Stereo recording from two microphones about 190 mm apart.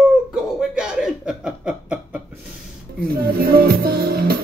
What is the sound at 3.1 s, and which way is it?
Music, 50° right (ahead or behind).